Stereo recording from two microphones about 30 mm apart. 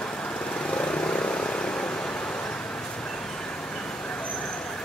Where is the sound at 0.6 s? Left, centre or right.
Left.